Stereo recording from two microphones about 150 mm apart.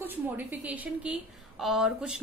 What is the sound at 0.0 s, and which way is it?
A woman's voice, 10° right (ahead or behind).